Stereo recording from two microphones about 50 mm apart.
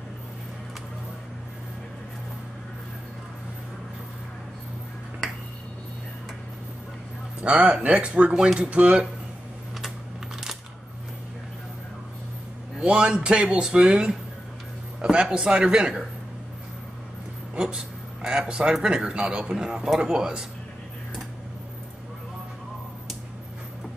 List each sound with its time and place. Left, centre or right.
7.4 s speech: right
12.8 s speech: centre
15.0 s music: centre
15.3 s speech: right
17.6 s speech: centre